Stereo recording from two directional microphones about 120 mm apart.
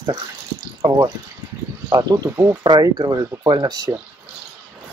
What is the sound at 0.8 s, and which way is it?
Speech, 40° right (ahead or behind).